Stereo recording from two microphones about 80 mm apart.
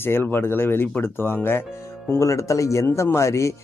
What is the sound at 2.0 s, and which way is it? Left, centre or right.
Speech, left.